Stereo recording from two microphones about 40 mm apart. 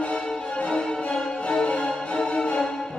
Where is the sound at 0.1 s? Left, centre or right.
Left.